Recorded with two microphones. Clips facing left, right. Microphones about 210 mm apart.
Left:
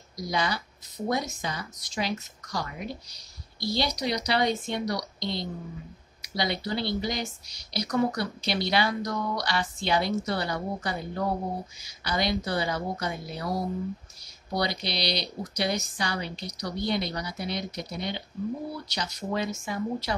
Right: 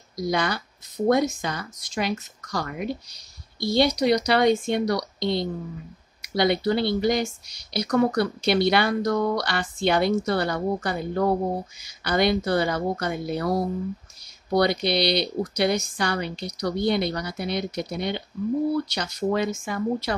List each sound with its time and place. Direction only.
0.3 s speech: 55° right (ahead or behind)